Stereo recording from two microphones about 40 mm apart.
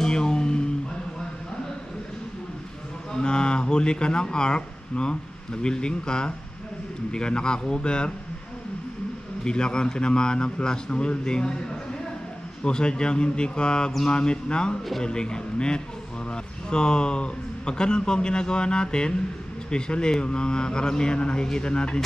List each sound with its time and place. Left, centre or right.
0.0 s guitar: centre
3.1 s speech: left
9.4 s speech: centre
12.6 s a man's voice: left